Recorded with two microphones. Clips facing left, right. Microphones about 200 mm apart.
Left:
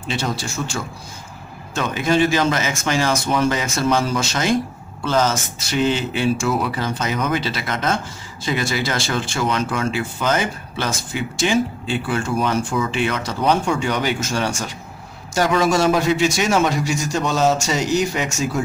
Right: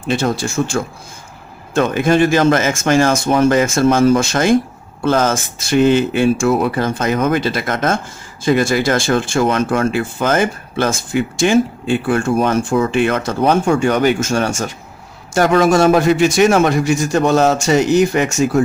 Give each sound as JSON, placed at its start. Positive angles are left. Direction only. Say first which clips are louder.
{"t": 0.0, "sound": "a man's voice", "louder": "right 7 dB", "side_deg": -50}